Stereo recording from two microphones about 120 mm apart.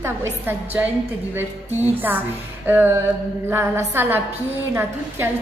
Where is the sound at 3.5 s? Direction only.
20° right (ahead or behind).